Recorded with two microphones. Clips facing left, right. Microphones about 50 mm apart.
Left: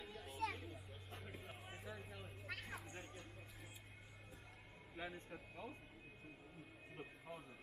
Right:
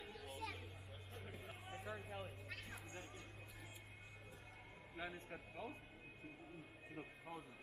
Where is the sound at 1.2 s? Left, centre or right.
Centre.